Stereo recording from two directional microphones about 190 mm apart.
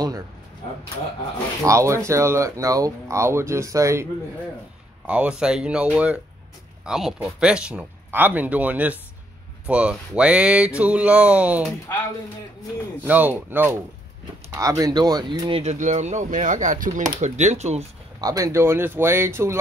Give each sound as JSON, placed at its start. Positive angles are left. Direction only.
{"t": 1.6, "sound": "speech", "side_deg": -15}
{"t": 13.0, "sound": "speech", "side_deg": -10}
{"t": 18.2, "sound": "speech", "side_deg": -20}